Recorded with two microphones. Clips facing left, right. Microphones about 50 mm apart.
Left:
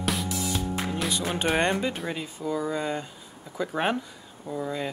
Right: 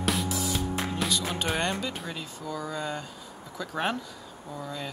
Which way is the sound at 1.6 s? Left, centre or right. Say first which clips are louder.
Left 5 dB; left.